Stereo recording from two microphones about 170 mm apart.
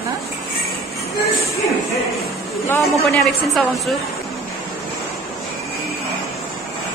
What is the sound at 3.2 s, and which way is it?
Speech, centre (ahead or behind).